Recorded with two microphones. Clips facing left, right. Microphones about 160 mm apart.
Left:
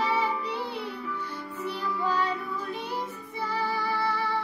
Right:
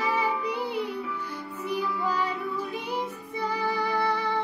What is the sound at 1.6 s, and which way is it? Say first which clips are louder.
Music: right 2 dB; 10° right (ahead or behind).